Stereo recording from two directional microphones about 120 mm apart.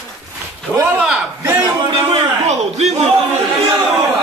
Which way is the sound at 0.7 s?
20° right (ahead or behind).